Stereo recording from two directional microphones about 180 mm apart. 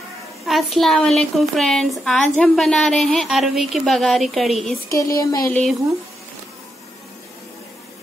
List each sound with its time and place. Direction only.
0.5 s a woman's voice: centre (ahead or behind)
4.9 s speech: 15° left (ahead or behind)
5.5 s a woman's voice: 5° left (ahead or behind)